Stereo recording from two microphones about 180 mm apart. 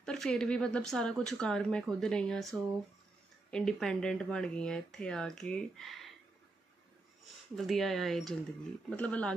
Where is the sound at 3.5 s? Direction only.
5° left (ahead or behind).